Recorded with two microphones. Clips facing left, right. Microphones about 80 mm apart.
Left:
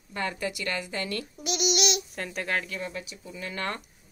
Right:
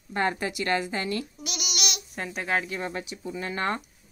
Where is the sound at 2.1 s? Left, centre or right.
Centre.